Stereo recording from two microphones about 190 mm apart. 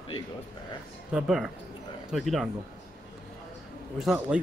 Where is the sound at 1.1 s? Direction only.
Centre (ahead or behind).